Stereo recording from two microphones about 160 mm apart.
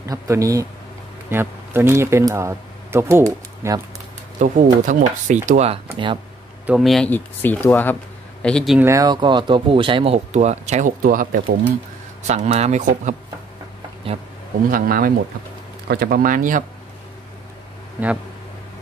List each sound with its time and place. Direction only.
0.1 s speech: 20° right (ahead or behind)
4.4 s speech: 50° right (ahead or behind)
5.5 s speech: 40° right (ahead or behind)
6.6 s speech: centre (ahead or behind)
7.1 s speech: 10° left (ahead or behind)
8.7 s speech: 15° right (ahead or behind); by 11.4 s 60° right (ahead or behind)
12.2 s speech: 45° right (ahead or behind)
14.7 s speech: 65° right (ahead or behind)